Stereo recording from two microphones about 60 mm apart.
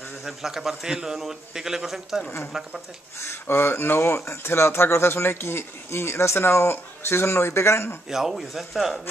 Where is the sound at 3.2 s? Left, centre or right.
Left.